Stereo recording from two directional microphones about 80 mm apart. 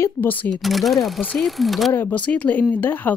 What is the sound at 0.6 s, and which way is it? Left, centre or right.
Speech, centre.